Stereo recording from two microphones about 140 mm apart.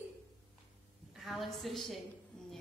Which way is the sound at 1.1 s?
Centre (ahead or behind).